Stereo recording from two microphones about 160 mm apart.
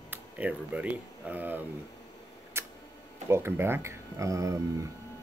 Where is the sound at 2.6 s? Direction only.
15° right (ahead or behind).